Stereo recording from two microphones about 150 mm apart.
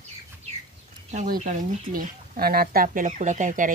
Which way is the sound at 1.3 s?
65° right (ahead or behind).